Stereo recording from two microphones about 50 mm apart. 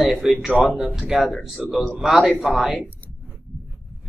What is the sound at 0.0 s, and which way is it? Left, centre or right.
Speech, centre.